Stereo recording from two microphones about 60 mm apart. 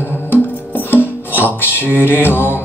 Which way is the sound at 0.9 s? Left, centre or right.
Left.